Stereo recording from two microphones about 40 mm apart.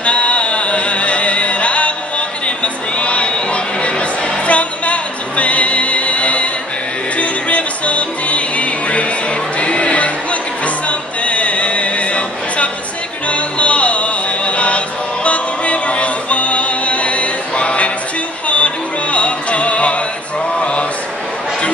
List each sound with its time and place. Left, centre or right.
0.0 s music: left
20.5 s mantra: left